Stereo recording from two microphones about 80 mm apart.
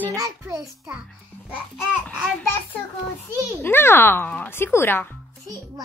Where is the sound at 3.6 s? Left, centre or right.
Left.